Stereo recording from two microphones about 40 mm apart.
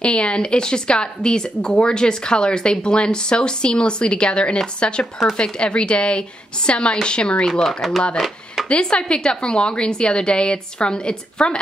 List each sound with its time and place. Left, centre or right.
0.0 s speech: left